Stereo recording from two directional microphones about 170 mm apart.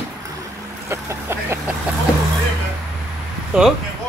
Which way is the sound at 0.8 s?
15° right (ahead or behind).